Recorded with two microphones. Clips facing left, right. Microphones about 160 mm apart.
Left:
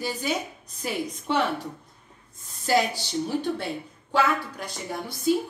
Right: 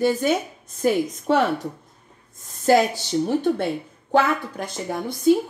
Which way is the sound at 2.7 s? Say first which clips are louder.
Right 6 dB; 50° right (ahead or behind).